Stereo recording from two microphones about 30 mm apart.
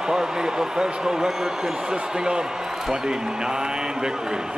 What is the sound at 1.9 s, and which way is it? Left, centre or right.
A man's voice, right.